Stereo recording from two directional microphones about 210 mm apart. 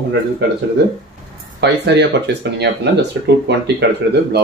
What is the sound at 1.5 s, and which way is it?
Speech, 55° right (ahead or behind).